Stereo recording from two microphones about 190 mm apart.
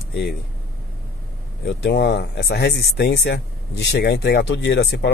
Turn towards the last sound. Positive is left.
turn(degrees=60)  # may be behind; listen again after turning